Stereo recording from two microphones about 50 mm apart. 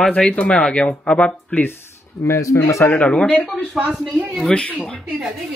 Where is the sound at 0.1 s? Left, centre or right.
Left.